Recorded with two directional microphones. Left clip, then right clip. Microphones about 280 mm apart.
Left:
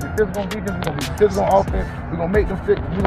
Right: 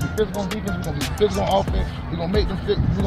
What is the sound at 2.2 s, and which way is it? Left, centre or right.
Speech, right.